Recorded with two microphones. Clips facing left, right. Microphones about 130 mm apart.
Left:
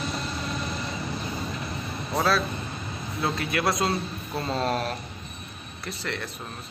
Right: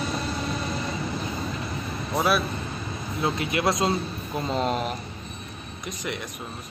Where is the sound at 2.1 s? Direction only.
15° right (ahead or behind).